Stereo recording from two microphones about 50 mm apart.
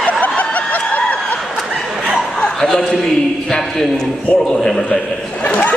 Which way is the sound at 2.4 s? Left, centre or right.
Centre.